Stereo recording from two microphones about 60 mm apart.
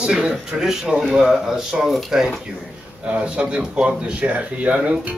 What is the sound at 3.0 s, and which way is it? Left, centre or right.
Speech, centre.